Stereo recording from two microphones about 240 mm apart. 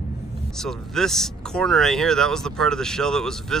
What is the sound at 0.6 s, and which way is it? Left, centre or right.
Speech, centre.